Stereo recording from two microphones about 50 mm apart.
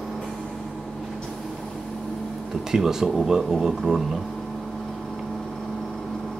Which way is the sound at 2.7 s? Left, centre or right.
Centre.